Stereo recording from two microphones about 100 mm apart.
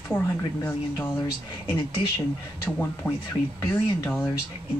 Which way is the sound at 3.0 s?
10° right (ahead or behind).